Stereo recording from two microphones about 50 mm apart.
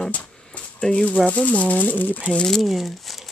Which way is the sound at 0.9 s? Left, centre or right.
Left.